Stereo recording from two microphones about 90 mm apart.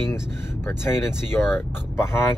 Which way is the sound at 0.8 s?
30° left (ahead or behind).